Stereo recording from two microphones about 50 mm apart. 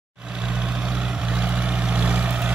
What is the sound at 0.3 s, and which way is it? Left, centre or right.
Vehicle, centre.